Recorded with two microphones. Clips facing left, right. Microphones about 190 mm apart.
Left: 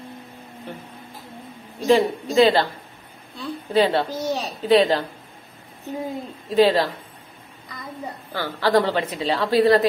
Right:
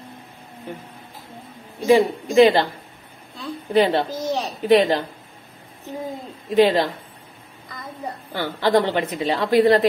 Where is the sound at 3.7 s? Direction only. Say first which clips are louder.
Right 1 dB; 20° right (ahead or behind).